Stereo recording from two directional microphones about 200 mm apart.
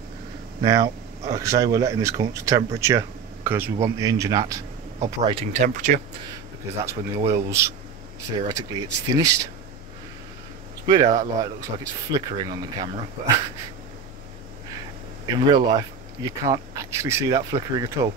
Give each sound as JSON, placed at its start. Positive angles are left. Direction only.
{"t": 0.6, "sound": "speech", "side_deg": -15}
{"t": 5.2, "sound": "speech", "side_deg": -30}
{"t": 6.8, "sound": "speech", "side_deg": -15}
{"t": 9.1, "sound": "speech", "side_deg": -15}
{"t": 10.9, "sound": "speech", "side_deg": -20}
{"t": 15.2, "sound": "speech", "side_deg": -20}